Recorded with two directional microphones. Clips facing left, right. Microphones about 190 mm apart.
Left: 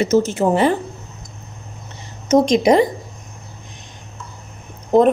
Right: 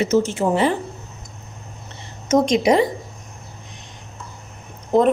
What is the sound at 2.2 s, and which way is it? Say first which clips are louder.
Speech: left 3 dB; 30° left (ahead or behind).